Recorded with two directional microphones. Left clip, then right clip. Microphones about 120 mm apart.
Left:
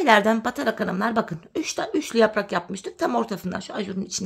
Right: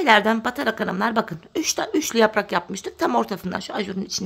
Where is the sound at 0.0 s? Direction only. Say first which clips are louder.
Right 1 dB; 10° right (ahead or behind).